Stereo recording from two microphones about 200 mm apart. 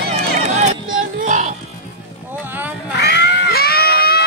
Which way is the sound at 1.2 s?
40° right (ahead or behind).